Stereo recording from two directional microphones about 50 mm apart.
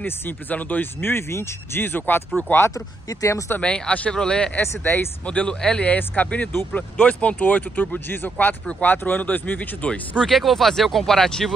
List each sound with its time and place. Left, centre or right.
0.0 s speech: left
1.0 s speech: left
3.6 s speech: left
4.6 s speech: left
5.2 s speech: left
5.9 s speech: left
10.1 s speech: centre